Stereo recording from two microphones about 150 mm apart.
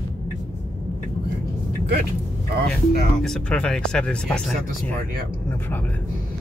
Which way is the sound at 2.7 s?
5° left (ahead or behind).